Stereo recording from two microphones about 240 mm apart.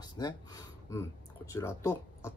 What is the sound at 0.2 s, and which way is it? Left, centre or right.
Speech, centre.